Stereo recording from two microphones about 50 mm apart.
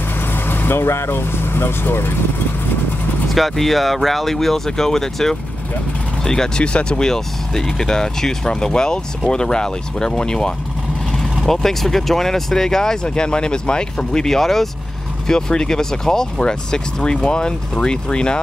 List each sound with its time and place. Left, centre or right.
0.3 s speech: left
3.3 s speech: centre